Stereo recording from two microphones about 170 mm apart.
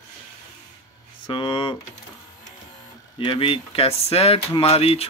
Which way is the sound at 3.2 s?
30° left (ahead or behind).